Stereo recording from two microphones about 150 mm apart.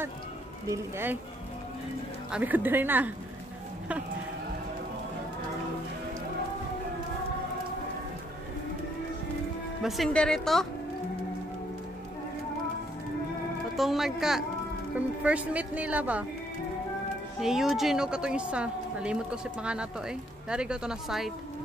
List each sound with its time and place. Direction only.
0.7 s speech: 15° right (ahead or behind)
2.3 s speech: 10° right (ahead or behind)
9.8 s a woman's voice: centre (ahead or behind)
13.7 s a woman's voice: centre (ahead or behind)
17.4 s a woman's voice: centre (ahead or behind)